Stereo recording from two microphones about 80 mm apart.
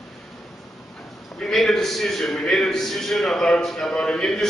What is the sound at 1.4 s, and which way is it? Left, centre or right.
A man's voice, centre.